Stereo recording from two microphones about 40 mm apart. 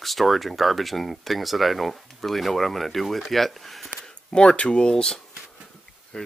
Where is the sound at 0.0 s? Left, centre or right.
Centre.